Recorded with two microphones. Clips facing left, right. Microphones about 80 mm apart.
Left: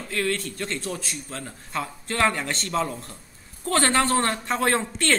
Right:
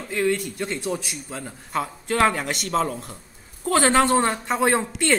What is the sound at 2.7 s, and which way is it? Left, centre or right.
Speech, right.